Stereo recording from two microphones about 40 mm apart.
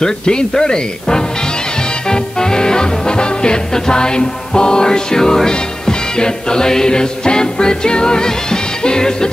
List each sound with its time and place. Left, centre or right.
0.0 s speech: left
2.0 s music: centre